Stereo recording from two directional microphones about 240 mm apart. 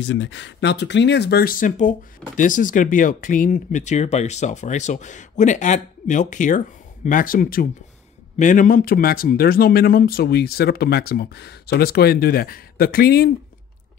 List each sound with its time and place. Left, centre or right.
0.0 s speech: left